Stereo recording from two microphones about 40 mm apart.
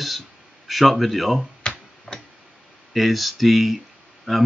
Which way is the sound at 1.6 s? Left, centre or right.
Left.